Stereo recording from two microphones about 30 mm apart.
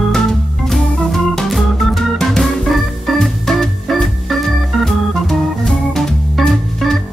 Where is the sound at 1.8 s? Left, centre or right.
Centre.